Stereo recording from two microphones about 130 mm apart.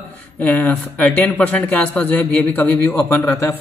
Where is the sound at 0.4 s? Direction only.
10° left (ahead or behind).